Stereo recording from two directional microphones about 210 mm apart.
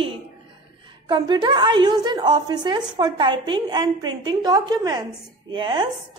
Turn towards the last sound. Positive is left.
turn(degrees=-20)  # may be behind; listen again after turning